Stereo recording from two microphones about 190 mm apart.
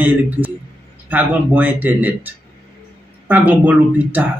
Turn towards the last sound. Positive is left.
turn(degrees=-10)  # may be behind; listen again after turning